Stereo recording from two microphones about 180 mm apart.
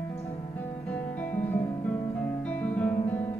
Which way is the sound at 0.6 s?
10° left (ahead or behind).